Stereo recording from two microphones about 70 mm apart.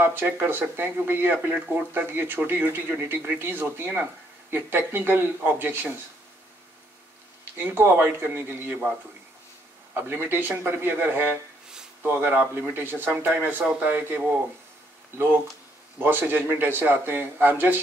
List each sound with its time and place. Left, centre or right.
0.0 s a man's voice: right
7.5 s a man's voice: right
9.9 s a man's voice: right
16.0 s a man's voice: right